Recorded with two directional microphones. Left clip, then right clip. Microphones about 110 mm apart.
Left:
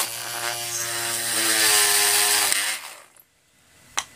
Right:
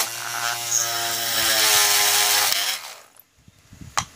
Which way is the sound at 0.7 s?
40° right (ahead or behind).